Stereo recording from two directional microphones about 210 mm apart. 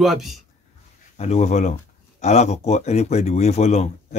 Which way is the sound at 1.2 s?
30° left (ahead or behind).